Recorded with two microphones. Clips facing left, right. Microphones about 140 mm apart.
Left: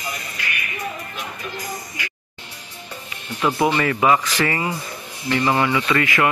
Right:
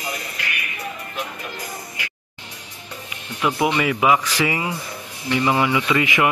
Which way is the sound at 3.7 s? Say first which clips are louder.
Even; 10° right (ahead or behind).